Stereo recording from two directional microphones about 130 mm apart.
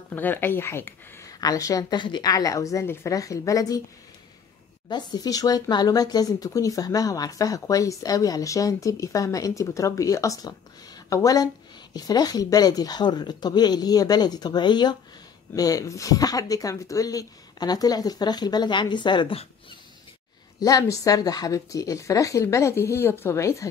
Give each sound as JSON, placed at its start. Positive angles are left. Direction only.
{"t": 0.1, "sound": "speech", "side_deg": 15}
{"t": 4.8, "sound": "speech", "side_deg": 35}
{"t": 20.5, "sound": "speech", "side_deg": 25}